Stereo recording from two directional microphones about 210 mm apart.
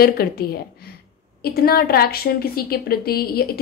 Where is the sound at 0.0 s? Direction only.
45° left (ahead or behind).